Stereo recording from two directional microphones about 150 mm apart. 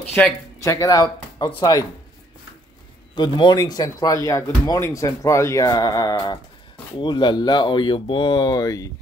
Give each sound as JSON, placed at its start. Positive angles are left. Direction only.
{"t": 0.2, "sound": "speech", "side_deg": 10}
{"t": 0.6, "sound": "speech", "side_deg": 20}
{"t": 3.2, "sound": "speech", "side_deg": 30}